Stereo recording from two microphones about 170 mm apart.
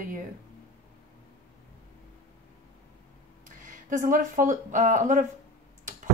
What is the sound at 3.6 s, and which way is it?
Speech, 50° right (ahead or behind).